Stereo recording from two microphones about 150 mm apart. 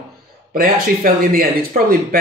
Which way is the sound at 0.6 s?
70° right (ahead or behind).